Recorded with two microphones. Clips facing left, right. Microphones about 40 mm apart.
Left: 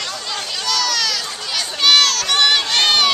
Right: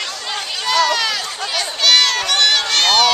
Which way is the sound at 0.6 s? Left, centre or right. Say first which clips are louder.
Right 5 dB; right.